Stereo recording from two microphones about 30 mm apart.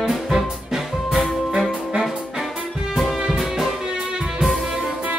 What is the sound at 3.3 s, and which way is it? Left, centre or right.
Music, centre.